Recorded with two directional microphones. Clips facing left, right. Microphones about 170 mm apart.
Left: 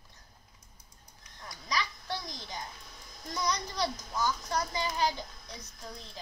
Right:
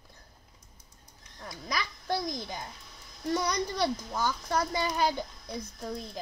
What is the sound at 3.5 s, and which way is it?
A child's voice, 55° right (ahead or behind).